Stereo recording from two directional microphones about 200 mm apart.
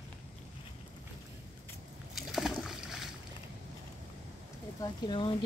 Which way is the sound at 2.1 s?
Centre (ahead or behind).